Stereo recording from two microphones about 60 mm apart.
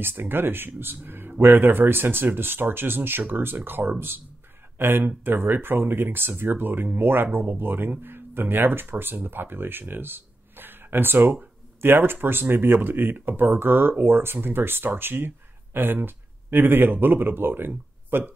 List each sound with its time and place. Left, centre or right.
0.0 s speech: right